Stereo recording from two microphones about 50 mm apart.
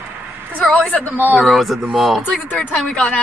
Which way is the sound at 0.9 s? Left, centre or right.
Left.